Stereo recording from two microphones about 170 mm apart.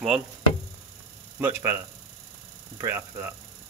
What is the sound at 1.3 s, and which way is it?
A man's voice, 10° right (ahead or behind).